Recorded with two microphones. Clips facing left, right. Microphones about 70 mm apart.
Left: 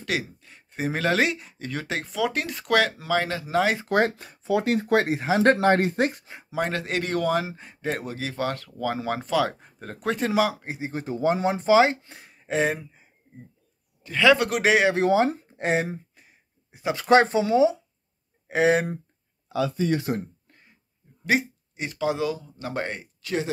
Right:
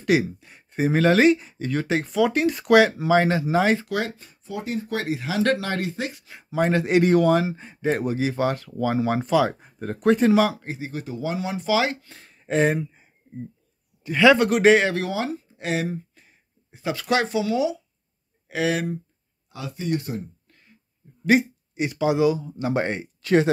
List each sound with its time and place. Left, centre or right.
0.0 s a sound: centre
0.7 s speech: centre
3.4 s speech: centre
4.2 s speech: left
5.0 s speech: left
6.5 s speech: centre
7.2 s speech: centre
10.9 s speech: left; by 15.0 s centre
15.0 s speech: left
16.2 s speech: centre; by 18.9 s left
20.1 s speech: left
21.3 s speech: centre
23.2 s speech: right